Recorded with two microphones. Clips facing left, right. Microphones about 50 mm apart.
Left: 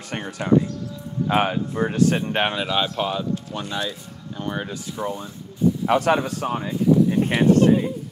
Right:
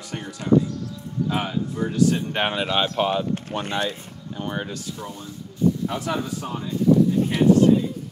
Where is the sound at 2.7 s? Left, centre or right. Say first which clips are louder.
Right 1 dB; centre.